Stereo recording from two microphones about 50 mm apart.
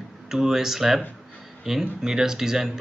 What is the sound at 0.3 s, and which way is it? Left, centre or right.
Speech, centre.